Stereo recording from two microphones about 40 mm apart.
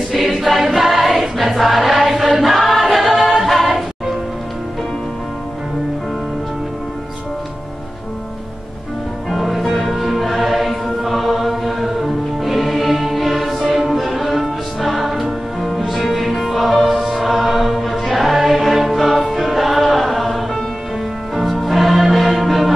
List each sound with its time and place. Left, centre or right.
0.3 s choir: centre
1.6 s music: centre
9.3 s music: centre